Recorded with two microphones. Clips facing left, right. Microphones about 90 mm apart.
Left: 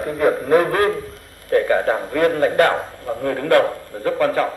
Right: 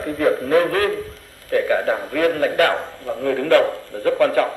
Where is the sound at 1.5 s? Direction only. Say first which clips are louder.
Left 2 dB; 35° left (ahead or behind).